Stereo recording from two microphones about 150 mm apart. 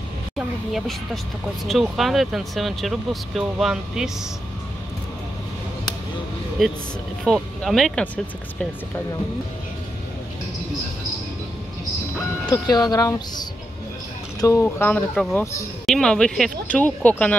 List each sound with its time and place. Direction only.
0.4 s speech: centre (ahead or behind)
6.6 s speech: centre (ahead or behind)
12.4 s speech: 25° left (ahead or behind); by 17.4 s 10° left (ahead or behind)